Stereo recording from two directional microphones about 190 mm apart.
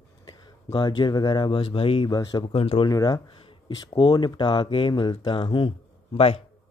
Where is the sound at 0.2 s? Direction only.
20° left (ahead or behind).